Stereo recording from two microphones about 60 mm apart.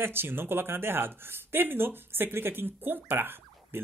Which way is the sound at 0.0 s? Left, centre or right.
Right.